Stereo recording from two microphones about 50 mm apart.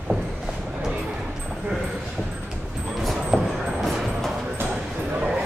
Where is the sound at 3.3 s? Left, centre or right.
Centre.